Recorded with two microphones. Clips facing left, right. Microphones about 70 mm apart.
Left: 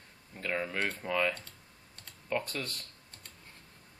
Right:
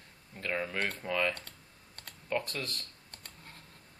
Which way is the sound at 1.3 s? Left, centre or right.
Right.